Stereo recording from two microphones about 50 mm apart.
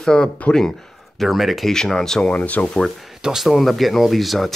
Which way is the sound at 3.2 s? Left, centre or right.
Centre.